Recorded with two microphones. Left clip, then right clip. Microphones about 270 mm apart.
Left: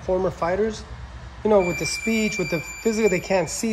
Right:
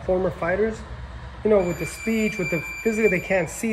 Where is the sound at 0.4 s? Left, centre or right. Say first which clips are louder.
Even; centre.